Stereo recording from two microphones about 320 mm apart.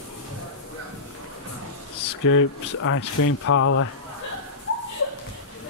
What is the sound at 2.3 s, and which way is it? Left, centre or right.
Speech, left.